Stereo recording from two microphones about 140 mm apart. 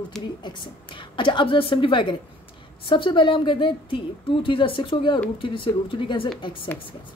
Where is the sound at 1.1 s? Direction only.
35° left (ahead or behind).